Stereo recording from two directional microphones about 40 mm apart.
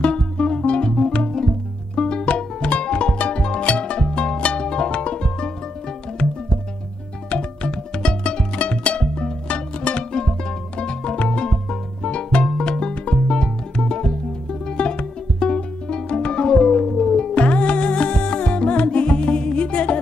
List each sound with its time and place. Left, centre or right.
0.0 s music: left
2.0 s music: left
16.8 s music: centre
17.3 s music: left